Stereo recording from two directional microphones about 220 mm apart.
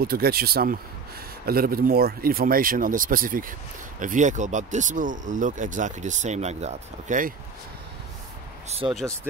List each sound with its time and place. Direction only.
0.0 s speech: 45° right (ahead or behind)
8.8 s speech: 20° right (ahead or behind)